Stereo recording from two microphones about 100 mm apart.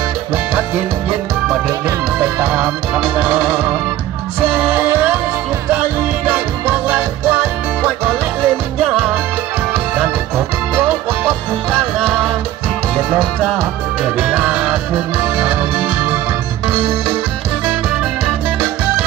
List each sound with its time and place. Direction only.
2.1 s music: 15° right (ahead or behind)
14.0 s music: 15° right (ahead or behind)